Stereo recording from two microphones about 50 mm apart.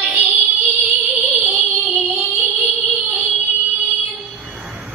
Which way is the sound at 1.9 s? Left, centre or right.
Right.